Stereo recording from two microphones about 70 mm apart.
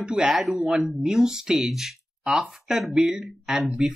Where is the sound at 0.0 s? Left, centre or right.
Centre.